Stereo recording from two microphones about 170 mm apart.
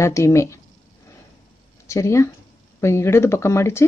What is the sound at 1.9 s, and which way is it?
Speech, 15° left (ahead or behind).